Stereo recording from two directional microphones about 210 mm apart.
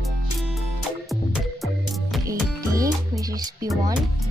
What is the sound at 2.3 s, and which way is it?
Music, 15° right (ahead or behind).